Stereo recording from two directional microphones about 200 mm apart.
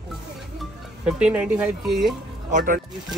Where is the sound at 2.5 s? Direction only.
40° right (ahead or behind).